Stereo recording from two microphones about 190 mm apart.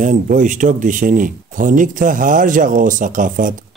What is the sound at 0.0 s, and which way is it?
Speech, 45° right (ahead or behind).